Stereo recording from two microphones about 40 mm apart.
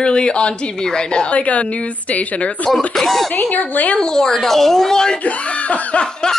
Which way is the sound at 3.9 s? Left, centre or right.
Centre.